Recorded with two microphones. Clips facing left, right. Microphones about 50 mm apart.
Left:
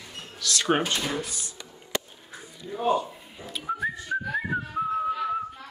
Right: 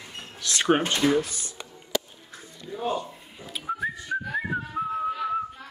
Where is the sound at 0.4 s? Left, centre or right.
Right.